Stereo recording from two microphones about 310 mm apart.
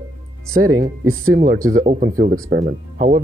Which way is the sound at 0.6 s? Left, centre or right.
Right.